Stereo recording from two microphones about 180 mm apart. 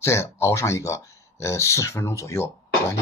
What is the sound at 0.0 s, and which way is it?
Speech, 15° left (ahead or behind).